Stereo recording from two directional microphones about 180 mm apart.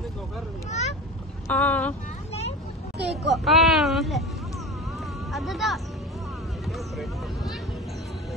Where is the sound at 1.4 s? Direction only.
10° left (ahead or behind).